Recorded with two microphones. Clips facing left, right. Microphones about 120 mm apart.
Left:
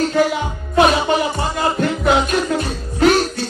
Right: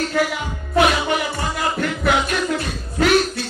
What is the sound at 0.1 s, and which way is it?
Music, 30° left (ahead or behind).